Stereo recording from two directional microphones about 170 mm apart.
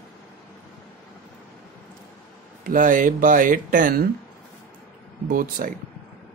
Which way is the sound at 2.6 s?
50° right (ahead or behind).